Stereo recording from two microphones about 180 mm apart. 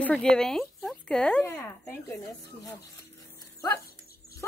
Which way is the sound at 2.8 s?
20° left (ahead or behind).